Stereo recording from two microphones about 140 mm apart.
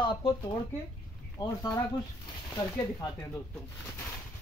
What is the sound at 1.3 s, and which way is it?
Speech, 25° left (ahead or behind).